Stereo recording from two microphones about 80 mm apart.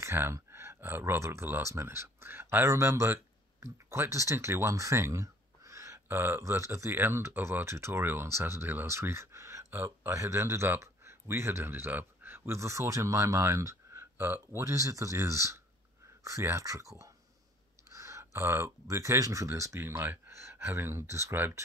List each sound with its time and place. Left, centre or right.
0.0 s speech: right
6.1 s speech: right
17.9 s speech: right